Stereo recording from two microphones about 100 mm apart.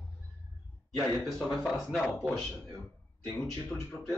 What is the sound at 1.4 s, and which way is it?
Speech, centre (ahead or behind).